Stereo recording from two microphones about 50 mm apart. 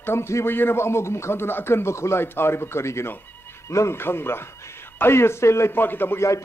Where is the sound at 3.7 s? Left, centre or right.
Left.